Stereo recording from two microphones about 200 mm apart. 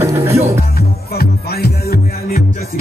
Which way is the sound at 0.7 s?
50° left (ahead or behind).